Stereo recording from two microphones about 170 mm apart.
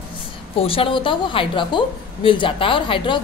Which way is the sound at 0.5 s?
30° left (ahead or behind).